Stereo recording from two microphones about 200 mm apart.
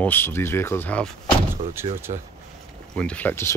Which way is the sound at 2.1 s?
30° right (ahead or behind).